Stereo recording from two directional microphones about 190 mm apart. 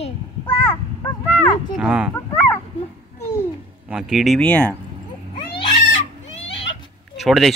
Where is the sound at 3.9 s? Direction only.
Centre (ahead or behind).